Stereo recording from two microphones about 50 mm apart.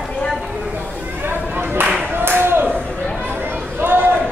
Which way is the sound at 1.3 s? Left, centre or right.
Right.